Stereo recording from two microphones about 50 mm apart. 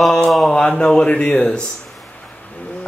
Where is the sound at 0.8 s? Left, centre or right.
Centre.